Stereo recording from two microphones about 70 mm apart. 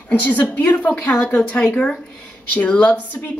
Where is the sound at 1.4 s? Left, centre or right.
Centre.